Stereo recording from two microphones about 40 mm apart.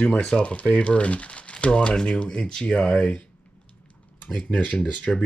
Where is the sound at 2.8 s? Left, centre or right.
Left.